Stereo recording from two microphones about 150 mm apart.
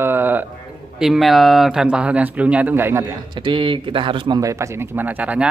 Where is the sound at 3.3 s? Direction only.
35° right (ahead or behind).